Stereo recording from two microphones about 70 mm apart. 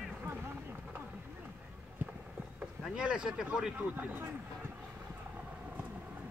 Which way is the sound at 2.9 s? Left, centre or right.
Centre.